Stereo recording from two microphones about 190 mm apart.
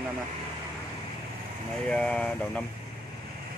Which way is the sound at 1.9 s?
5° left (ahead or behind).